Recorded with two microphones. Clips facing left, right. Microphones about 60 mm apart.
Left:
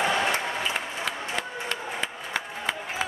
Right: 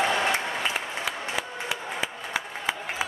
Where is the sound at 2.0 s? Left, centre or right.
Centre.